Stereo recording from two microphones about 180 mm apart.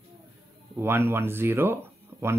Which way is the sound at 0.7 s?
15° right (ahead or behind).